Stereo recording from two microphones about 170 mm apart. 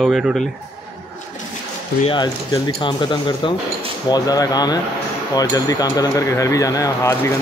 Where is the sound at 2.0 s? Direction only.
25° left (ahead or behind).